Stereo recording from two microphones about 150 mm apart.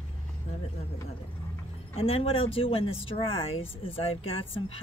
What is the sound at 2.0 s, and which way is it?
Speech, 40° left (ahead or behind).